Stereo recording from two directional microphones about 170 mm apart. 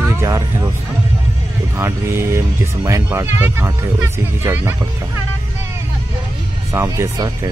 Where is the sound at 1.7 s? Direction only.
15° right (ahead or behind).